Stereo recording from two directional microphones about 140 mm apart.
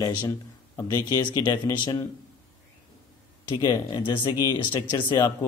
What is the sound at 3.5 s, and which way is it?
Speech, 25° left (ahead or behind).